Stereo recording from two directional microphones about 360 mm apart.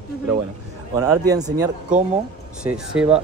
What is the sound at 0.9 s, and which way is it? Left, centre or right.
Speech, centre.